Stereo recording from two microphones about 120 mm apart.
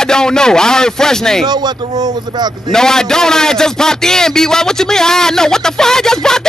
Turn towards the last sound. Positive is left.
turn(degrees=5)  # may be behind; listen again after turning